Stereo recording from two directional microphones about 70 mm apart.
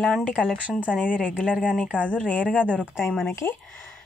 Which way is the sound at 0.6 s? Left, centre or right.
Centre.